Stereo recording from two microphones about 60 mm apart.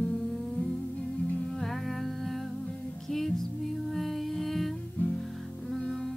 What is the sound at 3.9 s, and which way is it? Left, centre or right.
Music, centre.